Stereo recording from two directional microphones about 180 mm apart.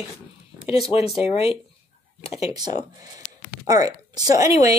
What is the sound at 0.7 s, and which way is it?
Speech, 35° left (ahead or behind).